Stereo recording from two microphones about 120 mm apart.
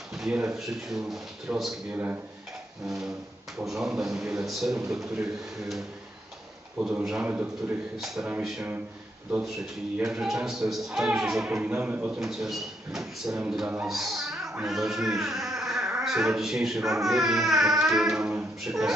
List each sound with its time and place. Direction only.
0.1 s speech: 5° right (ahead or behind)
3.5 s speech: 5° right (ahead or behind)
6.8 s a man's voice: 5° right (ahead or behind)
10.1 s speech: 5° right (ahead or behind)